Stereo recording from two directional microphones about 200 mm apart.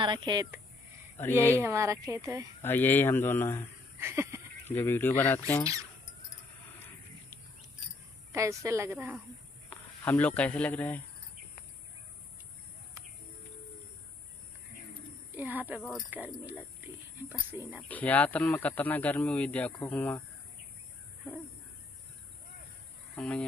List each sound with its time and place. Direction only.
0.0 s speech: 25° right (ahead or behind)
1.2 s speech: 10° left (ahead or behind)
1.6 s speech: 15° right (ahead or behind)
2.6 s speech: 10° left (ahead or behind)
4.0 s speech: 10° right (ahead or behind)
4.6 s speech: 10° left (ahead or behind)
8.3 s speech: 15° right (ahead or behind)
9.7 s speech: 10° left (ahead or behind)
15.3 s speech: 10° right (ahead or behind)
17.8 s speech: 10° left (ahead or behind)
23.1 s a sound: 5° left (ahead or behind)